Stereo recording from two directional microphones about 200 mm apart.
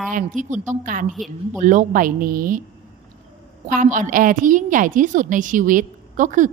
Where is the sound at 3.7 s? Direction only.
40° right (ahead or behind).